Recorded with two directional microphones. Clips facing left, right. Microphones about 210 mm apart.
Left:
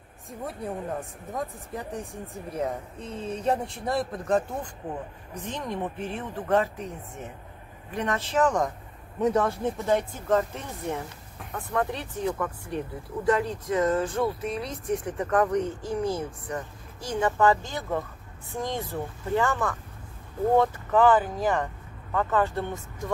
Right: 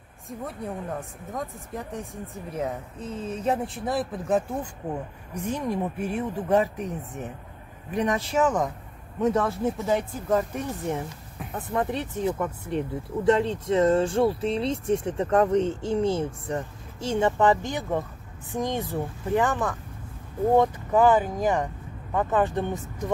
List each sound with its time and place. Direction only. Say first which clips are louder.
0.3 s speech: even; centre (ahead or behind); by 23.1 s 15° right (ahead or behind)